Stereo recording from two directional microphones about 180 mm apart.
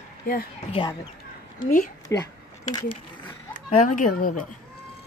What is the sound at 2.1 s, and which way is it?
Speech, 15° left (ahead or behind).